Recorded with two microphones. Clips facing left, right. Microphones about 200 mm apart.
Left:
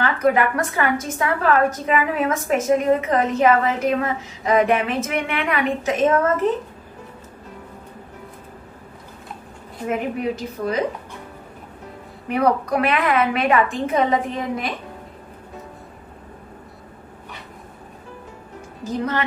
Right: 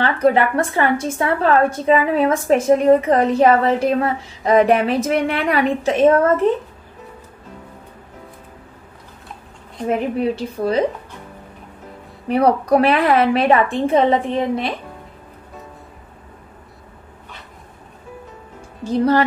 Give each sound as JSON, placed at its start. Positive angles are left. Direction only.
{"t": 0.0, "sound": "a woman's voice", "side_deg": -30}
{"t": 9.8, "sound": "a woman's voice", "side_deg": -30}
{"t": 12.3, "sound": "a woman's voice", "side_deg": -30}
{"t": 18.9, "sound": "a woman's voice", "side_deg": -35}